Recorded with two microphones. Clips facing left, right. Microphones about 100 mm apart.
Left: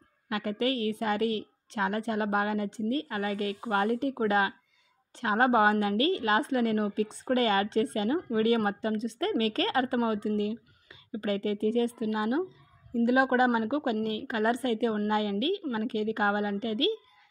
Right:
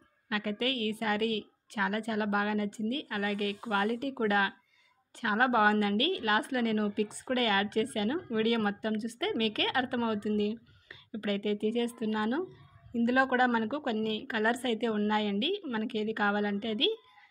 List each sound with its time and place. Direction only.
0.3 s a woman's voice: 25° left (ahead or behind)